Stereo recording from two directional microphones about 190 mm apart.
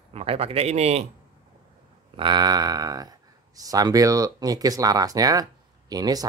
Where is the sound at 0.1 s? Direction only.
30° right (ahead or behind).